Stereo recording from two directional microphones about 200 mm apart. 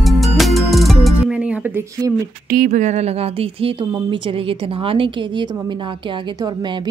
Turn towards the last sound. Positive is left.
turn(degrees=-25)  # may be behind; listen again after turning